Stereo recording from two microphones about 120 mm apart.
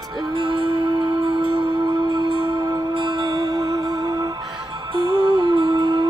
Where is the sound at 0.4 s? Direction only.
45° right (ahead or behind).